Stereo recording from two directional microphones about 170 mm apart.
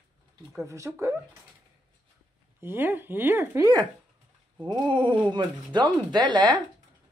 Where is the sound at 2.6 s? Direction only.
10° right (ahead or behind).